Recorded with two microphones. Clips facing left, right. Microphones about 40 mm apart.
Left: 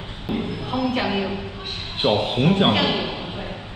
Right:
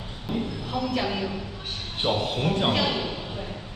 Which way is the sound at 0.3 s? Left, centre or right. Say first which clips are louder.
Left 3 dB; left.